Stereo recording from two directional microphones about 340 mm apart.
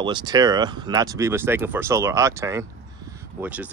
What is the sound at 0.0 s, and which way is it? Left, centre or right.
Speech, centre.